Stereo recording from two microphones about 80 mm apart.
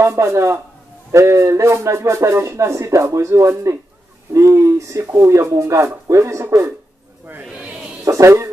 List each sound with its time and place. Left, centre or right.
0.0 s a man's voice: right
7.2 s a sound: right
8.0 s a man's voice: right